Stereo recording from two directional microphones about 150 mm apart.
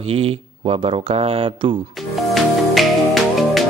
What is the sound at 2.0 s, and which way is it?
Music, centre (ahead or behind).